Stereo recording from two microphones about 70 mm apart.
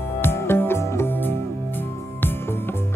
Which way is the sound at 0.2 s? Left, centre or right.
Left.